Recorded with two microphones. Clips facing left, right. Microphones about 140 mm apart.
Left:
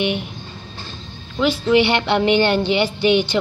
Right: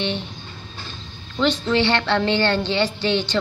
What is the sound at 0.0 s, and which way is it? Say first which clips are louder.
Speech: left 4 dB; 15° left (ahead or behind).